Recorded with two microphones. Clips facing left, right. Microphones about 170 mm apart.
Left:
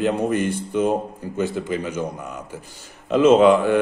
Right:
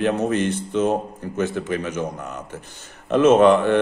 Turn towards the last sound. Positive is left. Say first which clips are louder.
# even
turn(degrees=10)  # may be behind; listen again after turning